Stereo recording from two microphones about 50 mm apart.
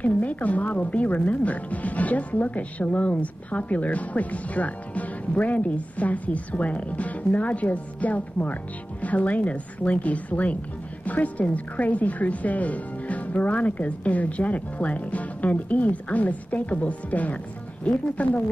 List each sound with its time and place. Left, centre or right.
0.0 s a woman's voice: left